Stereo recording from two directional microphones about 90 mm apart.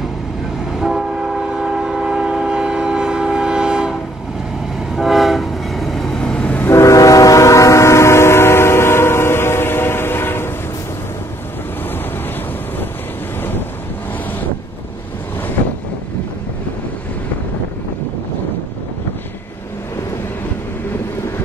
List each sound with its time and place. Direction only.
0.7 s train: 5° right (ahead or behind)
4.9 s train: centre (ahead or behind); by 6.7 s 15° left (ahead or behind)
6.7 s train: 35° left (ahead or behind)